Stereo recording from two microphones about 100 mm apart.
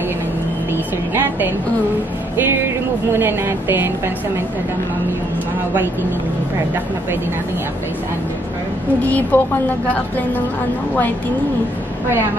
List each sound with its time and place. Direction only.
3.1 s a woman's voice: 25° right (ahead or behind)
9.0 s a woman's voice: 15° left (ahead or behind)